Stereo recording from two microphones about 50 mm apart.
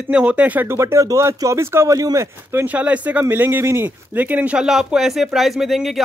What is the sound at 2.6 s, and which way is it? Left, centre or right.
Speech, right.